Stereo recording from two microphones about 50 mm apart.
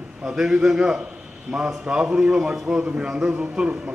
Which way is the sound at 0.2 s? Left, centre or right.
Centre.